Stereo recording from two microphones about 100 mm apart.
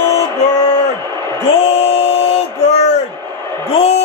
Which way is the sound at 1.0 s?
40° right (ahead or behind).